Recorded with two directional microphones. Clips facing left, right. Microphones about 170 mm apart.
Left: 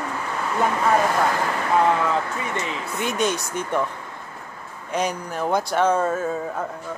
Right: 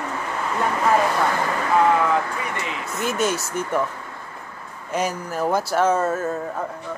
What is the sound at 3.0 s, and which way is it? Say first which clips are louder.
Speech: right 1 dB; 5° right (ahead or behind).